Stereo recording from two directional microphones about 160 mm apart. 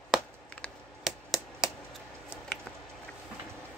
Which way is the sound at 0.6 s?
Centre (ahead or behind).